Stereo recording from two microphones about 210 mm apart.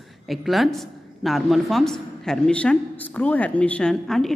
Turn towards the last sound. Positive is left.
turn(degrees=0)  # may be behind; listen again after turning